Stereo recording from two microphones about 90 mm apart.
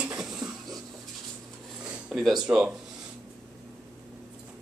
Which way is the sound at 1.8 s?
10° right (ahead or behind).